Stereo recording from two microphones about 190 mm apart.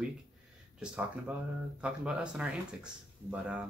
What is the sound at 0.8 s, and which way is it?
Speech, 5° right (ahead or behind).